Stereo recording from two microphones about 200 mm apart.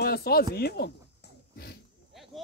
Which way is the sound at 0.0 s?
50° left (ahead or behind).